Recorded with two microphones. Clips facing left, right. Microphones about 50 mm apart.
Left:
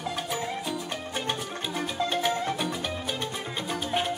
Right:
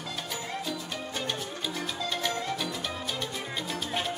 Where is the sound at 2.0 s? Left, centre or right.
Left.